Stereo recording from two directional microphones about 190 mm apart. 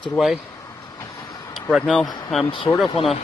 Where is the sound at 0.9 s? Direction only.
15° left (ahead or behind).